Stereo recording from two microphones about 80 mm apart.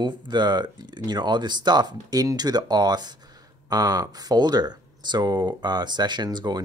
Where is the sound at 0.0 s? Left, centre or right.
Right.